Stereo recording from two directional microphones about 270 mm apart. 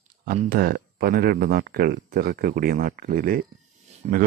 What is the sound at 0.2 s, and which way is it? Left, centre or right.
Speech, right.